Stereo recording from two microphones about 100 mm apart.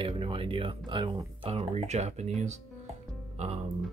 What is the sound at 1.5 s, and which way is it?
Speech, 90° right.